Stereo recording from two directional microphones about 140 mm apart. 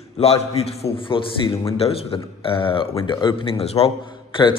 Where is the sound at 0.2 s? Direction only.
45° left (ahead or behind).